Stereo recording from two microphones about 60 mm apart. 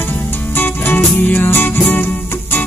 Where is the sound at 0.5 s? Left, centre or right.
Left.